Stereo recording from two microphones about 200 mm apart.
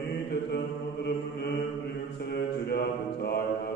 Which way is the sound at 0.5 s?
55° left (ahead or behind).